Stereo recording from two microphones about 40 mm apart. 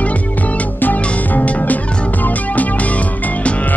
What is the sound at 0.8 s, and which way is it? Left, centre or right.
Music, left.